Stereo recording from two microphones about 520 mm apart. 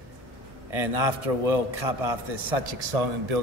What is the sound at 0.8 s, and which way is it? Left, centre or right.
Speech, right.